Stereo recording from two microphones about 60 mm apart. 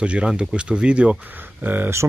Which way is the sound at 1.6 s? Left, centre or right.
Right.